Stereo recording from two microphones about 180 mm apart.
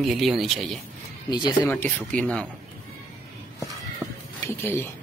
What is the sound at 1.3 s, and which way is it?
Speech, 25° left (ahead or behind).